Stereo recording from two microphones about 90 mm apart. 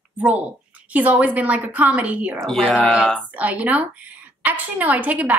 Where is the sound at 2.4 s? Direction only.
5° left (ahead or behind).